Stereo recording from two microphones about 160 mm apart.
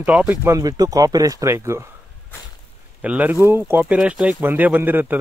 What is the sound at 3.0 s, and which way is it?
Speech, 10° right (ahead or behind).